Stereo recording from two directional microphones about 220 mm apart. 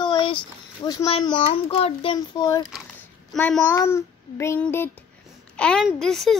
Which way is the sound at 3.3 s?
5° left (ahead or behind).